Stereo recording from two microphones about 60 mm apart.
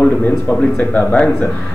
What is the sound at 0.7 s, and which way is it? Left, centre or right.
Speech, centre.